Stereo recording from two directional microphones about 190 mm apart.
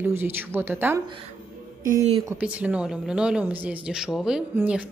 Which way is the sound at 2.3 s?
5° right (ahead or behind).